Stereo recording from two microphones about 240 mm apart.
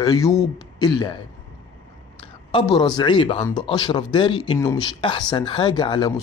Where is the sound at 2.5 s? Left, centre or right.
Centre.